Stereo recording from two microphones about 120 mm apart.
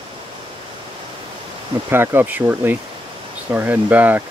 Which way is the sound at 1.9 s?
20° right (ahead or behind).